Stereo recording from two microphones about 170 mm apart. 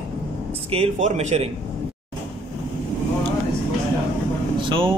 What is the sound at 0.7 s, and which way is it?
Speech, 40° right (ahead or behind).